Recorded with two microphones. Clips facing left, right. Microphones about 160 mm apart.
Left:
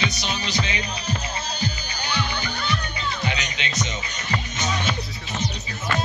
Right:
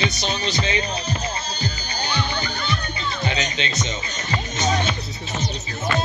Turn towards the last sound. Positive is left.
turn(degrees=-30)  # may be behind; listen again after turning